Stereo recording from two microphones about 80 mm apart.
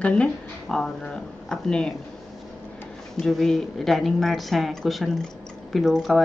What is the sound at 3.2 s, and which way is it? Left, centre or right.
A woman's voice, centre.